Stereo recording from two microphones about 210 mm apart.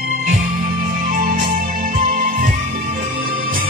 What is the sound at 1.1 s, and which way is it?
Music, 40° right (ahead or behind).